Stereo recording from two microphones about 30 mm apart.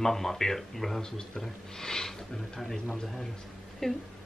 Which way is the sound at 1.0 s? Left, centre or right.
Left.